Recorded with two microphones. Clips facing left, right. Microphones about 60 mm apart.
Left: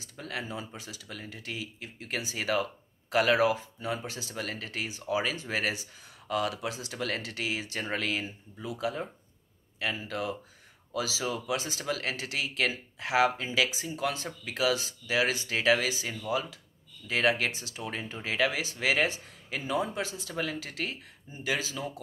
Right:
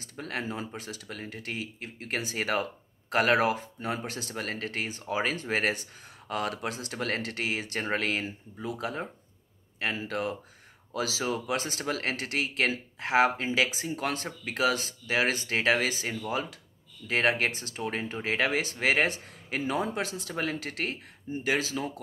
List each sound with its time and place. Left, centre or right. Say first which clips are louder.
0.2 s speech: right 3 dB; right